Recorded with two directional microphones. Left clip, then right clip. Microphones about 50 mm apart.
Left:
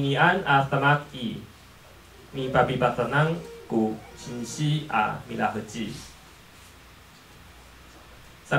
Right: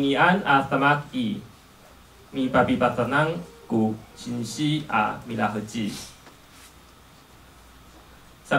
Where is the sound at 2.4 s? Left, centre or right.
Right.